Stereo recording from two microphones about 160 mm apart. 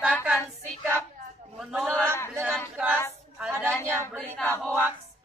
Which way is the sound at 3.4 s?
10° right (ahead or behind).